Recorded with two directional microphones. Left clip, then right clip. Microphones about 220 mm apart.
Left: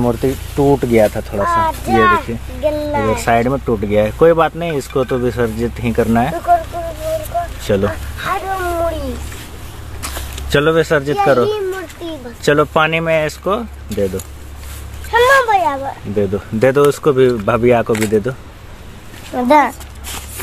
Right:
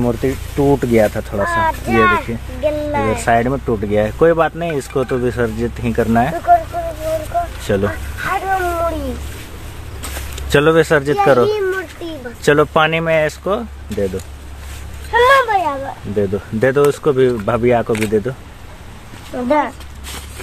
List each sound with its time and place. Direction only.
0.0 s speech: 10° left (ahead or behind)
1.6 s speech: 10° left (ahead or behind)
7.6 s a sound: 5° left (ahead or behind)
10.3 s speech: 5° right (ahead or behind); by 14.2 s 10° left (ahead or behind)
15.0 s music: 50° left (ahead or behind)
16.2 s speech: 10° left (ahead or behind)
19.3 s speech: 55° left (ahead or behind)